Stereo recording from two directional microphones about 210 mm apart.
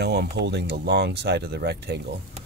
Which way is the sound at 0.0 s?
50° right (ahead or behind).